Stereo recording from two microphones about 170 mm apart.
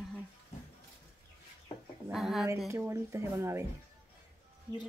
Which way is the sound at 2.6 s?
15° right (ahead or behind).